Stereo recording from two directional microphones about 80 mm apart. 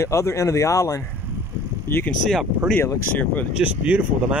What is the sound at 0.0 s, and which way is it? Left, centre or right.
Speech, left.